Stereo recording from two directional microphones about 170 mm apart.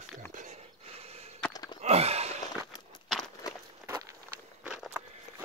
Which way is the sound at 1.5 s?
25° left (ahead or behind).